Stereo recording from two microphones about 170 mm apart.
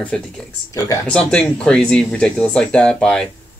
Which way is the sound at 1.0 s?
5° left (ahead or behind).